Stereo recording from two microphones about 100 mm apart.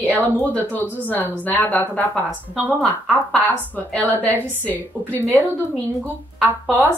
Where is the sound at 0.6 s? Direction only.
15° left (ahead or behind).